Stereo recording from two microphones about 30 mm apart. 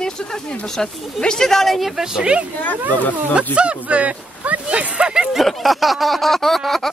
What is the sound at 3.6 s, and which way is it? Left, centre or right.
Speech, right.